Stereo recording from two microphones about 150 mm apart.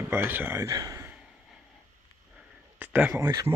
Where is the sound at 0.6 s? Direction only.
25° right (ahead or behind).